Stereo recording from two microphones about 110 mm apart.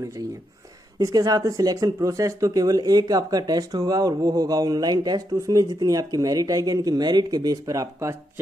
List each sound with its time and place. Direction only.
0.9 s speech: 35° right (ahead or behind)